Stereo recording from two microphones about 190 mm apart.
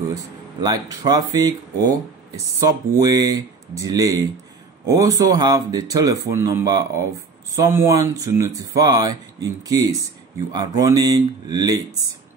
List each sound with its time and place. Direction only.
0.1 s speech: 20° right (ahead or behind)
2.6 s speech: 20° right (ahead or behind)